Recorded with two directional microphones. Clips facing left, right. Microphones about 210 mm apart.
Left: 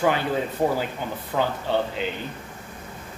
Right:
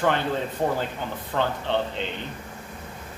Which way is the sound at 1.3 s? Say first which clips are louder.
Left 1 dB; 5° left (ahead or behind).